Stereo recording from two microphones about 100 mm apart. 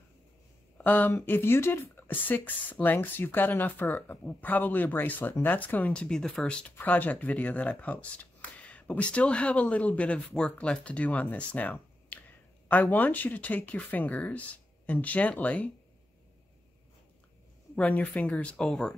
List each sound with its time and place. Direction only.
0.7 s speech: 15° left (ahead or behind)
17.7 s speech: 15° left (ahead or behind)